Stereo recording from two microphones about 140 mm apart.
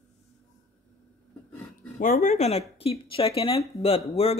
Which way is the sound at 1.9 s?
75° left (ahead or behind).